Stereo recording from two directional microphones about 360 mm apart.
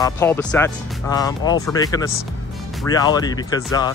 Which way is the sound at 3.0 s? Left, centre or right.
Centre.